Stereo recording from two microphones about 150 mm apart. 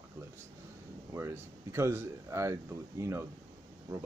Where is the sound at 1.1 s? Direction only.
20° right (ahead or behind).